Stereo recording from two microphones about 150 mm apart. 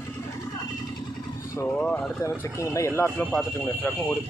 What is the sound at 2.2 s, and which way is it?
Speech, 20° left (ahead or behind).